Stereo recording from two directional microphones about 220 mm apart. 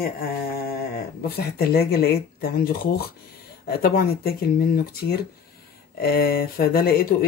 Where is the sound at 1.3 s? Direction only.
45° left (ahead or behind).